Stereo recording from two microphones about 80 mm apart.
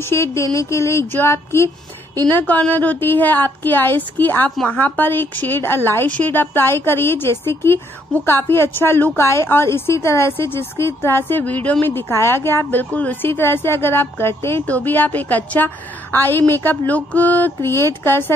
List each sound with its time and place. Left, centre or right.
0.0 s speech: left
2.3 s a woman's voice: left
17.6 s speech: left